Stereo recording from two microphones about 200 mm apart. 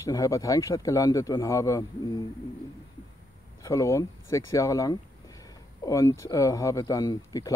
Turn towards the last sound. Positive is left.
turn(degrees=20)  # may be behind; listen again after turning